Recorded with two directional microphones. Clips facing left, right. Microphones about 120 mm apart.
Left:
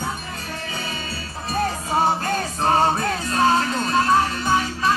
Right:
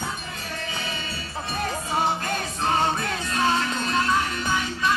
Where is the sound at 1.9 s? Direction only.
40° left (ahead or behind).